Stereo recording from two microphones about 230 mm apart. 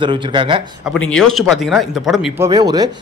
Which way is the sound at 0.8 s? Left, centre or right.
Centre.